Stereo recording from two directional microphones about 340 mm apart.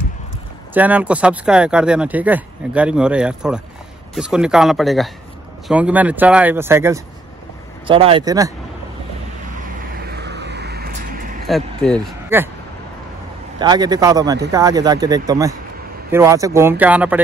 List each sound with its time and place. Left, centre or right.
0.7 s speech: centre
10.0 s vehicle: right
11.4 s speech: centre
13.6 s speech: centre